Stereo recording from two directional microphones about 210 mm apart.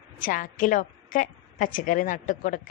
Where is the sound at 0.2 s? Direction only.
40° left (ahead or behind).